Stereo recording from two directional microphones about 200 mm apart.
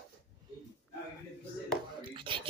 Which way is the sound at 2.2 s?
25° right (ahead or behind).